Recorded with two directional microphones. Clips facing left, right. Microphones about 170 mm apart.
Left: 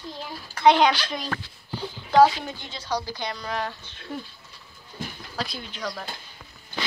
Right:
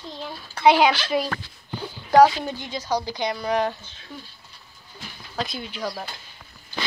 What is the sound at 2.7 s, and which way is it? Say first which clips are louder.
A woman's voice: right 3 dB; 15° right (ahead or behind).